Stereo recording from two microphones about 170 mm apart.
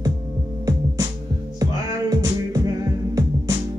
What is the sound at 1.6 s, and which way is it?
Music, 20° right (ahead or behind).